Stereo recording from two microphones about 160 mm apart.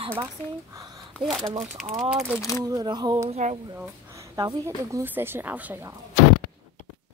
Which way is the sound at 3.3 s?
45° right (ahead or behind).